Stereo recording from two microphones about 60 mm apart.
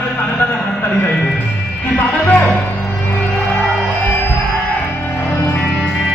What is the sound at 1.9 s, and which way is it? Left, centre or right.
Music, left.